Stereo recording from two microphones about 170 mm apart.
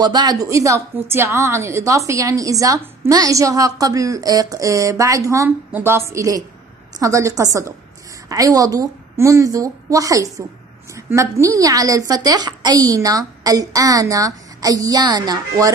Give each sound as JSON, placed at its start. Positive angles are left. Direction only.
{"t": 0.0, "sound": "a woman's voice", "side_deg": -25}